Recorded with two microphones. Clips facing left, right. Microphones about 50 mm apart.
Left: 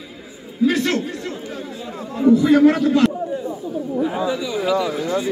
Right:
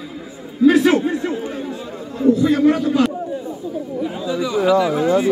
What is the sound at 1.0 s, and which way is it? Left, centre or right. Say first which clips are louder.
Speech: right 7 dB; right.